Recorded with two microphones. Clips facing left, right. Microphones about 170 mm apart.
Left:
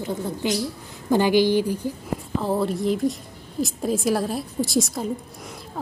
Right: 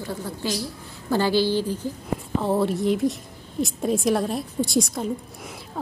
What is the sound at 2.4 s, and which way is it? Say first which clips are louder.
A woman's voice: right 1 dB; centre (ahead or behind).